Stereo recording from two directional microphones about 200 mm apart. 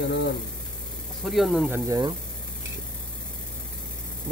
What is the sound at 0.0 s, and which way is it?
Speech, 60° left (ahead or behind).